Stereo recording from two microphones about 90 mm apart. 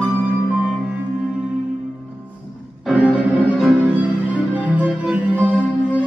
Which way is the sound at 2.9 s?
15° right (ahead or behind).